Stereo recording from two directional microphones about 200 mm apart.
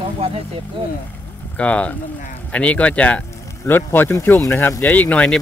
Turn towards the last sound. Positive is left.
turn(degrees=5)  # may be behind; listen again after turning